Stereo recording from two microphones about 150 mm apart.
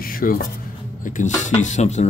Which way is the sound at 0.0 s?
70° left (ahead or behind).